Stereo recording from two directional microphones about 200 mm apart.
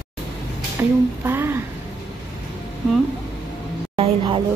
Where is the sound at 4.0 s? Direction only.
25° right (ahead or behind).